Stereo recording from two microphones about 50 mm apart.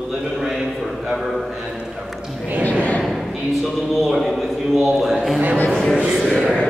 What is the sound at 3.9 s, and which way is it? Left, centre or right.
A man's voice, centre.